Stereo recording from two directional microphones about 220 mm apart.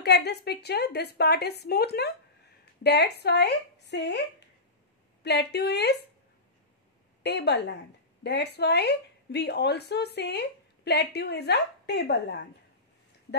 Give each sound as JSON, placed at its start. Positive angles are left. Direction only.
{"t": 0.0, "sound": "speech", "side_deg": 50}
{"t": 7.2, "sound": "speech", "side_deg": 50}